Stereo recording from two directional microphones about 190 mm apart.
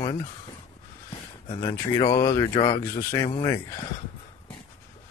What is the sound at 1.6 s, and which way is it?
Speech, 20° left (ahead or behind).